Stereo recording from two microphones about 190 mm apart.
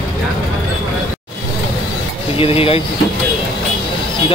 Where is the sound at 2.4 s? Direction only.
30° left (ahead or behind).